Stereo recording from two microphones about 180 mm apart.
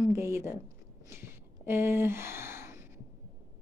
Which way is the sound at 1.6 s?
15° right (ahead or behind).